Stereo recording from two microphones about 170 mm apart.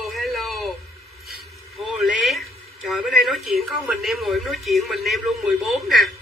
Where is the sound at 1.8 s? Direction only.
Centre (ahead or behind).